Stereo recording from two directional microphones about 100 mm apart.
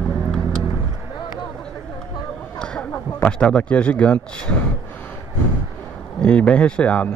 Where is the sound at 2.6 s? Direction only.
10° left (ahead or behind).